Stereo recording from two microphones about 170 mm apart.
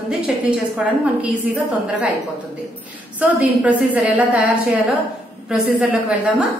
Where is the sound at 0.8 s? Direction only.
5° right (ahead or behind).